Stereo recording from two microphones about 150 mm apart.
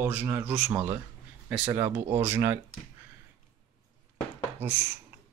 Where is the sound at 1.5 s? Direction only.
15° right (ahead or behind).